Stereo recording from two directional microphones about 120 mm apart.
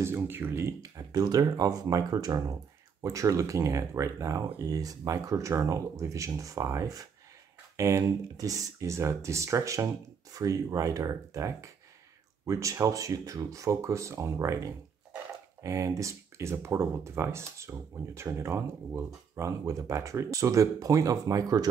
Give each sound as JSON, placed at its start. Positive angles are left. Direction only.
{"t": 0.0, "sound": "speech", "side_deg": -20}